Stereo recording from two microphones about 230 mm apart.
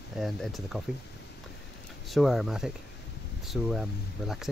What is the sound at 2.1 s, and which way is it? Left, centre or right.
Speech, centre.